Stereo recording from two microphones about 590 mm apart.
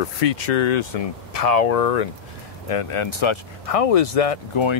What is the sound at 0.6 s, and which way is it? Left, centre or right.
Speech, left.